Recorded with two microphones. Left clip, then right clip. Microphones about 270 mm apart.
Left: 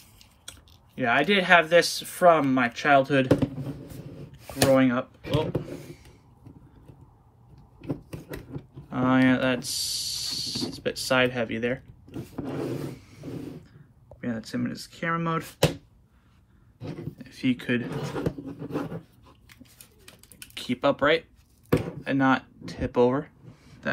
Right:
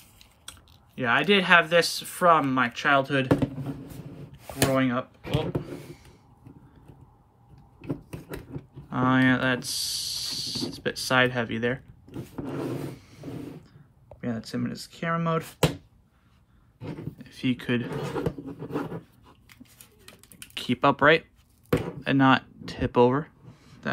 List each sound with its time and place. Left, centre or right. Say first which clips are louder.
0.2 s speech: even; centre
3.9 s a sound: left 1 dB; centre
4.6 s speech: left 4 dB; centre
7.8 s a sound: left 1 dB; centre
14.2 s speech: left 1 dB; centre
16.8 s speech: even; centre
20.5 s speech: right 2 dB; centre